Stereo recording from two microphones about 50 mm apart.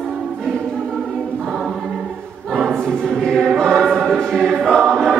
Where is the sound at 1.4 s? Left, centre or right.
Centre.